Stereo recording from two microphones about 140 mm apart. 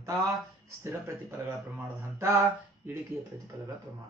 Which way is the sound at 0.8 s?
20° right (ahead or behind).